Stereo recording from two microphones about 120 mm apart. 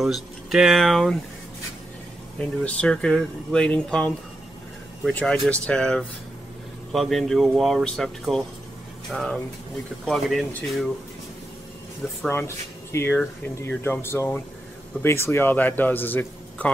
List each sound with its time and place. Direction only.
0.0 s speech: centre (ahead or behind)
2.3 s a man's voice: 10° left (ahead or behind)
12.3 s a man's voice: 20° left (ahead or behind)